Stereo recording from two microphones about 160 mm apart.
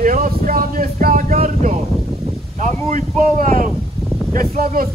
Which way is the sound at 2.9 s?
50° right (ahead or behind).